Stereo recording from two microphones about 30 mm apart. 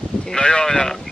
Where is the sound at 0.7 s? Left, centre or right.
Centre.